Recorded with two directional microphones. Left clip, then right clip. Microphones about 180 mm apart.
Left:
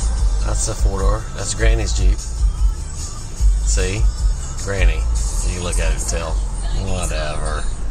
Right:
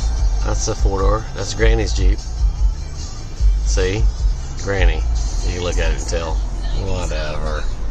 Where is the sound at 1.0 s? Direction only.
35° right (ahead or behind).